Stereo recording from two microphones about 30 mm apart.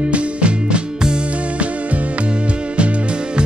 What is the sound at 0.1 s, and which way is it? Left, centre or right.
Music, right.